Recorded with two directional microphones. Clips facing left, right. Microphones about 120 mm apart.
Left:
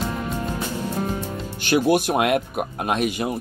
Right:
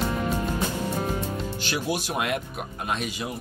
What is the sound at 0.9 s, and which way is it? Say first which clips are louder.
Music: left 2 dB; 10° right (ahead or behind).